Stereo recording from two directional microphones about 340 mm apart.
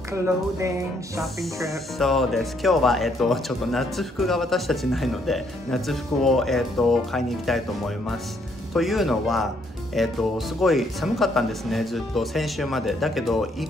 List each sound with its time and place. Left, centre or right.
0.2 s speech: centre